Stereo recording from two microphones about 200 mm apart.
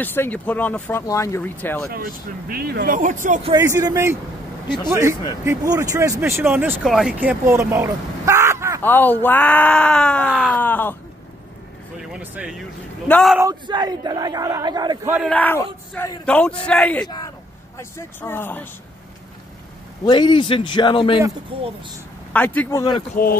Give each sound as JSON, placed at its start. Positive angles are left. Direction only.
{"t": 0.0, "sound": "speech", "side_deg": 10}
{"t": 1.9, "sound": "speech", "side_deg": -45}
{"t": 3.5, "sound": "speech", "side_deg": -15}
{"t": 8.8, "sound": "speech", "side_deg": 10}
{"t": 12.0, "sound": "a man's voice", "side_deg": -5}
{"t": 13.4, "sound": "speech", "side_deg": -20}
{"t": 15.1, "sound": "a man's voice", "side_deg": 5}
{"t": 20.1, "sound": "a man's voice", "side_deg": 20}
{"t": 21.5, "sound": "speech", "side_deg": -25}
{"t": 22.3, "sound": "speech", "side_deg": 10}